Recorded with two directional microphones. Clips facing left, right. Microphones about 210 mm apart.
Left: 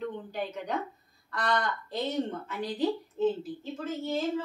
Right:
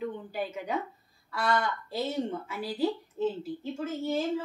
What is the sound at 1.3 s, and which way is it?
Speech, 5° right (ahead or behind).